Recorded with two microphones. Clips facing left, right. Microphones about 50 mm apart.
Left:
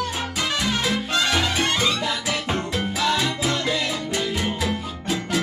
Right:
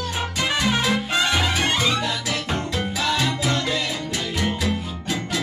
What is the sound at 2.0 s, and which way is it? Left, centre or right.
Music, centre.